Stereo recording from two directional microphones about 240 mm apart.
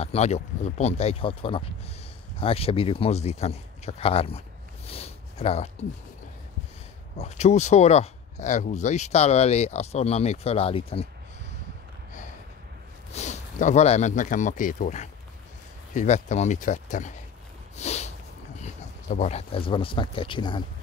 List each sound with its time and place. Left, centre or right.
0.0 s speech: left
4.8 s a sound: left
7.2 s speech: left
13.1 s speech: left
17.7 s a sound: left
18.6 s speech: left